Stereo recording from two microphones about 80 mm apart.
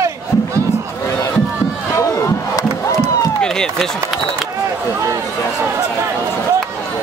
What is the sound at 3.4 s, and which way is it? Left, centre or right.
Run, centre.